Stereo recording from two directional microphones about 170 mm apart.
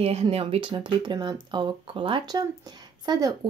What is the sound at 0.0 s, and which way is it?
Speech, 40° right (ahead or behind).